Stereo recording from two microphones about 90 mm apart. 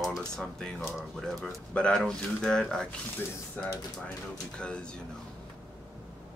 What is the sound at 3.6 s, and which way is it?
Speech, 20° left (ahead or behind).